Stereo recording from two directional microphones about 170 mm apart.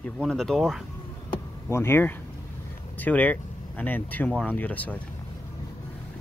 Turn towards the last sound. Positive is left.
turn(degrees=10)  # may be behind; listen again after turning